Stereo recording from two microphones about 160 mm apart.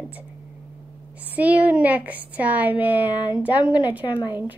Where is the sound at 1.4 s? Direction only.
10° right (ahead or behind).